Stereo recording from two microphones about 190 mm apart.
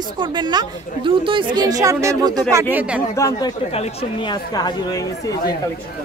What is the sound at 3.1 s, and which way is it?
Speech, 15° left (ahead or behind).